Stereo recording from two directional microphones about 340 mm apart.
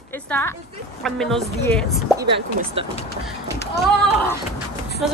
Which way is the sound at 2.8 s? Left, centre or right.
Centre.